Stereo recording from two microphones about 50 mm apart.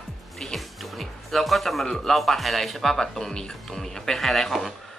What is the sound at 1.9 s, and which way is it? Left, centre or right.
Speech, centre.